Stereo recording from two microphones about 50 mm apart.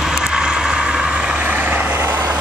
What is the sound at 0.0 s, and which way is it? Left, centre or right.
Vehicle, centre.